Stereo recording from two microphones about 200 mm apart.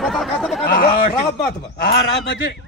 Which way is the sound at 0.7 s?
45° left (ahead or behind).